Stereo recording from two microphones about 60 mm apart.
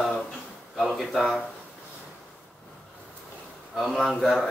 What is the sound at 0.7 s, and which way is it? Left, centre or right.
Speech, centre.